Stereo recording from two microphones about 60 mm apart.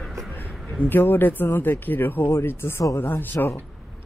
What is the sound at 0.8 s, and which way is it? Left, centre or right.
Speech, left.